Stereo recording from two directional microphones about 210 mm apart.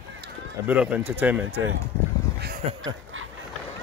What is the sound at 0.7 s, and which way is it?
Speech, 5° right (ahead or behind).